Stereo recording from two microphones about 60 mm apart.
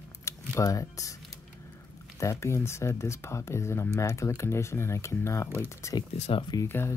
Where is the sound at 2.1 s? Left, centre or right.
Left.